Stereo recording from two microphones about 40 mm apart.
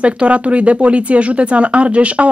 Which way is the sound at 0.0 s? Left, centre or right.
Right.